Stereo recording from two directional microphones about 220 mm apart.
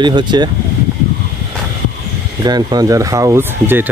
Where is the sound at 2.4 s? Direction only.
20° right (ahead or behind).